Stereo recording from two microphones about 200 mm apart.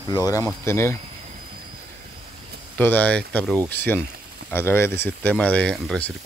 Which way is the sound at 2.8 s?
10° left (ahead or behind).